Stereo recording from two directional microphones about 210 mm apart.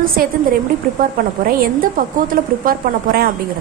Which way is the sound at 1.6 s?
40° right (ahead or behind).